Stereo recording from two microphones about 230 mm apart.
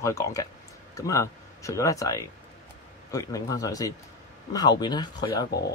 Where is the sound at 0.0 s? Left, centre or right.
Centre.